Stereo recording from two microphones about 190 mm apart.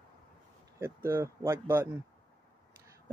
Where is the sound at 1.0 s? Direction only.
15° right (ahead or behind).